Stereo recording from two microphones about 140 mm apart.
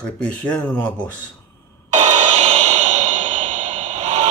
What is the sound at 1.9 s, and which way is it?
Music, 50° right (ahead or behind).